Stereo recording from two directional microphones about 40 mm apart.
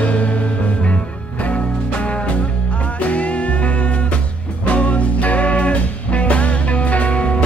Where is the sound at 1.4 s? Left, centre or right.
Left.